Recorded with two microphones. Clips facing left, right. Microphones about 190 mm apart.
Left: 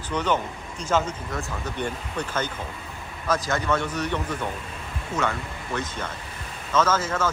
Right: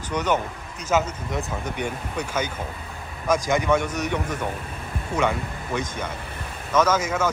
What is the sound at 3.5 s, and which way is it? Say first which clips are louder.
Speech: right 4 dB; 15° right (ahead or behind).